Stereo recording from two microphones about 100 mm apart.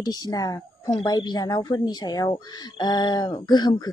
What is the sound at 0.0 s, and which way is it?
Speech, 40° left (ahead or behind).